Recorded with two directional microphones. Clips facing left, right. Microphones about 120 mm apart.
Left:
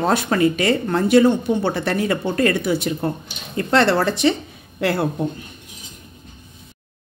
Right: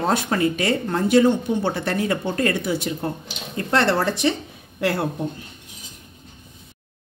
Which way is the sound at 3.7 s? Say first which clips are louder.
Left 3 dB; 85° left.